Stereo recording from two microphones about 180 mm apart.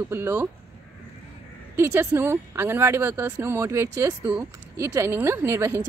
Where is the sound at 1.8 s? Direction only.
10° right (ahead or behind).